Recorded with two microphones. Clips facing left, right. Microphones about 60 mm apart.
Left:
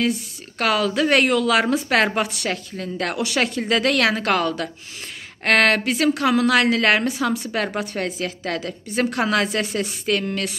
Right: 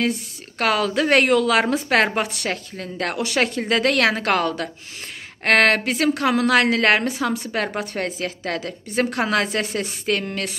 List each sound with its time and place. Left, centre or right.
0.6 s a woman's voice: right
7.0 s a woman's voice: right
7.8 s a woman's voice: right